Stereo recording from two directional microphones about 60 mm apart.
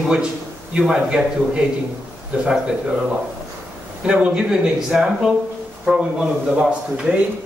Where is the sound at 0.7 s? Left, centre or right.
Centre.